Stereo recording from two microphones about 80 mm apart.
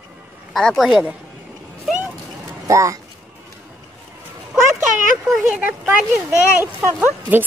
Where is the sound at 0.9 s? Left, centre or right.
Centre.